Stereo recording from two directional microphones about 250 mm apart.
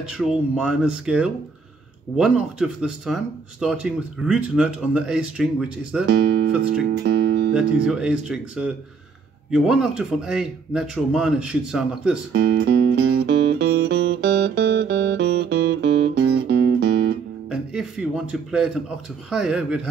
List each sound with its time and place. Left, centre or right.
0.0 s speech: centre
6.0 s speech: right
7.5 s speech: centre
12.3 s music: right
17.5 s music: centre
19.3 s speech: centre